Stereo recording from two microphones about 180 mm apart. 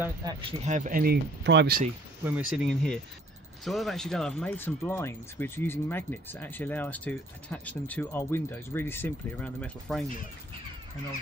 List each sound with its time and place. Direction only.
0.0 s speech: 20° right (ahead or behind)
0.7 s speech: 45° right (ahead or behind); by 1.8 s 75° right (ahead or behind)
2.2 s speech: 5° right (ahead or behind)